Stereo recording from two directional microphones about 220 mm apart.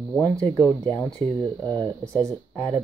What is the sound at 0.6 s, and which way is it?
Speech, 10° left (ahead or behind).